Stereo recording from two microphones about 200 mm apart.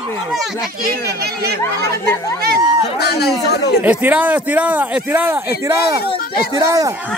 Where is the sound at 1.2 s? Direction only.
50° right (ahead or behind).